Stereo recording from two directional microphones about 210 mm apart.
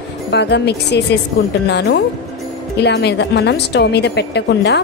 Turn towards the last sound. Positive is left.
turn(degrees=55)  # may be behind; listen again after turning